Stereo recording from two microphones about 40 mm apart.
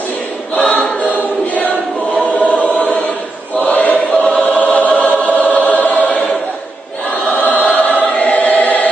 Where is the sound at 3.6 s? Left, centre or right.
Left.